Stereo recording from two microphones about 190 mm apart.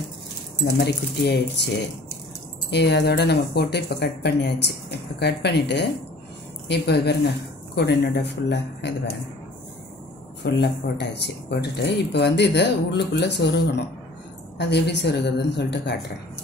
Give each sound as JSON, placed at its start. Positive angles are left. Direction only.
{"t": 0.7, "sound": "speech", "side_deg": 60}
{"t": 10.4, "sound": "speech", "side_deg": 65}